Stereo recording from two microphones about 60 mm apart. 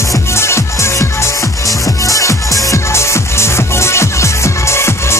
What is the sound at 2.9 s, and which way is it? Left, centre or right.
Music, left.